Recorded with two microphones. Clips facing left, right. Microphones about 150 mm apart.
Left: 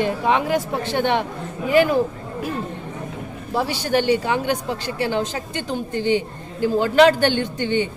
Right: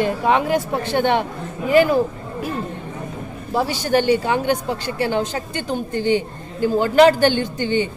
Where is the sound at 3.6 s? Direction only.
45° right (ahead or behind).